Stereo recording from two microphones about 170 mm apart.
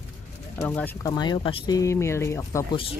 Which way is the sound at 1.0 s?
25° left (ahead or behind).